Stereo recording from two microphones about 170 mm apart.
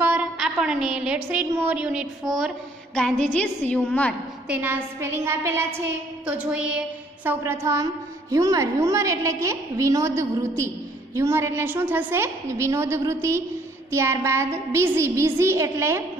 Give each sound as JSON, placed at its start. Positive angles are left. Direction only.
{"t": 0.0, "sound": "a woman's voice", "side_deg": -10}
{"t": 4.5, "sound": "a woman's voice", "side_deg": -10}